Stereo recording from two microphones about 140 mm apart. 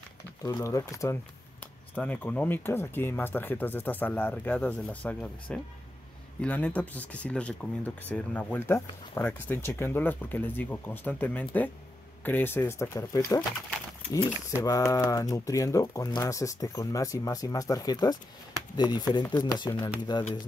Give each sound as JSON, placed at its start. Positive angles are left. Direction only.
{"t": 0.4, "sound": "speech", "side_deg": 25}
{"t": 14.5, "sound": "speech", "side_deg": 25}